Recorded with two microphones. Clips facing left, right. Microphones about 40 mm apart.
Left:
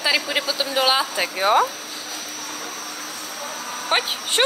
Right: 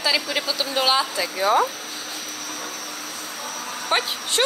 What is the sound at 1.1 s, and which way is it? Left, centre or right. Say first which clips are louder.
Speech: left 2 dB; left.